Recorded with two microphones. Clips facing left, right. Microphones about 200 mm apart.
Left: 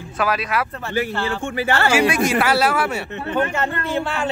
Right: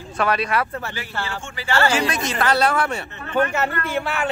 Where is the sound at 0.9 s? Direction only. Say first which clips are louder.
Left 8 dB; 55° left (ahead or behind).